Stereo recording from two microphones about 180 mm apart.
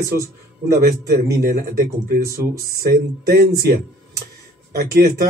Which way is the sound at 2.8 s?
55° right (ahead or behind).